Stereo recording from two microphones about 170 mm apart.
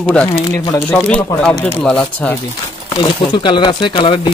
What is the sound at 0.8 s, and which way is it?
Speech, 5° left (ahead or behind).